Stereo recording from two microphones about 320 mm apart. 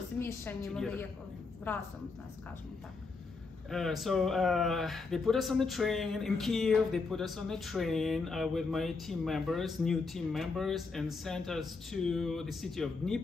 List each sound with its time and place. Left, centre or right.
0.2 s a woman's voice: centre
3.7 s speech: centre